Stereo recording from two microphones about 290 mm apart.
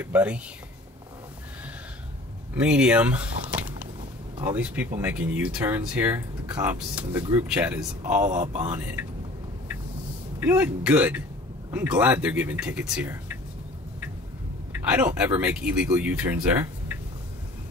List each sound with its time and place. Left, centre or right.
0.0 s speech: centre
2.5 s speech: centre
8.2 s speech: right
8.5 s speech: centre
10.4 s speech: centre
14.7 s speech: centre